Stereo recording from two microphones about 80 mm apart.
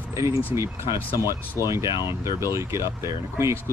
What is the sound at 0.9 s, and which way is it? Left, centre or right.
Speech, left.